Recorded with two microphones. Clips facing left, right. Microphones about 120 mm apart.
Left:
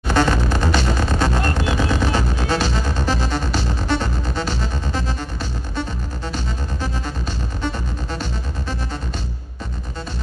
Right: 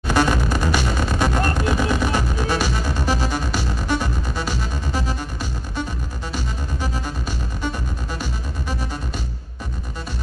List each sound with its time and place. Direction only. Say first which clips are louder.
0.1 s music: left 1 dB; 10° right (ahead or behind)